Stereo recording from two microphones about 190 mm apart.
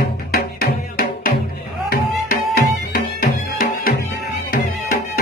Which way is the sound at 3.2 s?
50° left (ahead or behind).